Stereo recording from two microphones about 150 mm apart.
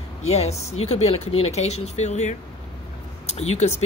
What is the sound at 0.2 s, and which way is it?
Speech, 45° left (ahead or behind).